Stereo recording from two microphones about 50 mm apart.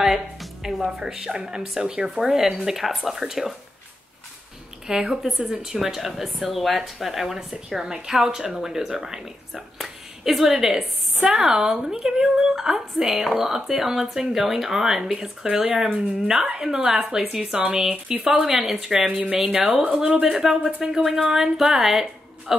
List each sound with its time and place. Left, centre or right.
0.0 s a woman's voice: centre
4.8 s a woman's voice: centre
16.6 s a woman's voice: centre